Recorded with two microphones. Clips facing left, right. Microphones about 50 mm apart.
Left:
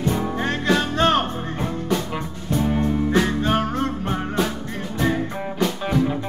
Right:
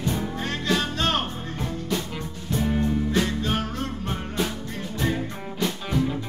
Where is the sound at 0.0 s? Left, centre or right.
Left.